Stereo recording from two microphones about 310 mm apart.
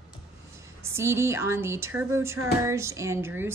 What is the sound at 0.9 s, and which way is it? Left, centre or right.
Speech, centre.